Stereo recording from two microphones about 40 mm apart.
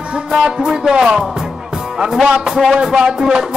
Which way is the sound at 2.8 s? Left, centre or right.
Centre.